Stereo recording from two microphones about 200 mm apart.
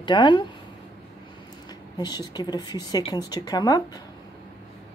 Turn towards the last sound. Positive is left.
turn(degrees=20)  # may be behind; listen again after turning